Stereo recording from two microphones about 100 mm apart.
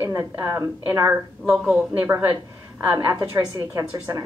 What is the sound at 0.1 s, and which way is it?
A woman's voice, 30° right (ahead or behind).